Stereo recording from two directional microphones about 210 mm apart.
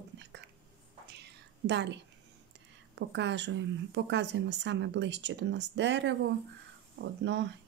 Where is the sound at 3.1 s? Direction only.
60° right (ahead or behind).